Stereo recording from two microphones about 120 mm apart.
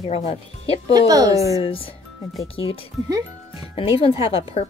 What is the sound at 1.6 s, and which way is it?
Speech, 50° left (ahead or behind).